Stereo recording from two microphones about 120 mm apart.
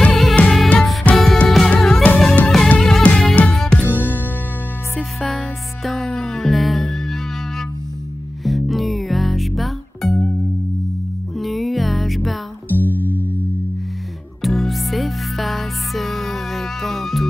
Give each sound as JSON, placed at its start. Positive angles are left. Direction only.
{"t": 0.0, "sound": "music", "side_deg": 5}
{"t": 4.9, "sound": "music", "side_deg": 5}
{"t": 8.5, "sound": "music", "side_deg": 0}
{"t": 11.3, "sound": "music", "side_deg": 0}
{"t": 12.7, "sound": "music", "side_deg": -15}
{"t": 14.4, "sound": "music", "side_deg": 0}